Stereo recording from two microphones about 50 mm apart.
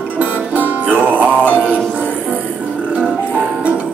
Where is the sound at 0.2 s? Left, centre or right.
Right.